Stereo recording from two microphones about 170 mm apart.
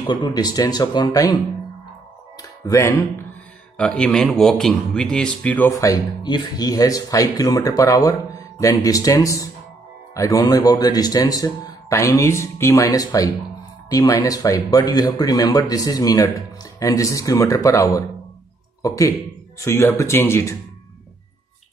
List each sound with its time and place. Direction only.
0.1 s speech: 25° left (ahead or behind)
2.6 s speech: 15° left (ahead or behind)
5.7 s speech: 20° left (ahead or behind)